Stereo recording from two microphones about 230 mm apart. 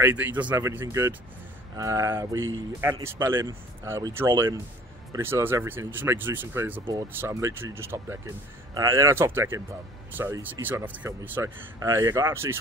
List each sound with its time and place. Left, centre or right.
0.0 s speech: centre